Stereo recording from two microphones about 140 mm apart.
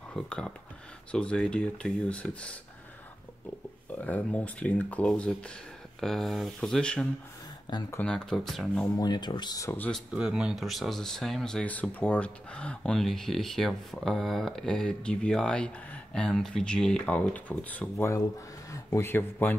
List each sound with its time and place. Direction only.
0.1 s speech: 5° left (ahead or behind)
4.0 s speech: 10° left (ahead or behind)
7.7 s speech: 30° left (ahead or behind)
8.0 s speech: 5° left (ahead or behind)
8.9 s speech: 30° left (ahead or behind)
9.7 s speech: 10° left (ahead or behind)
10.1 s speech: 5° right (ahead or behind); by 19.5 s 15° left (ahead or behind)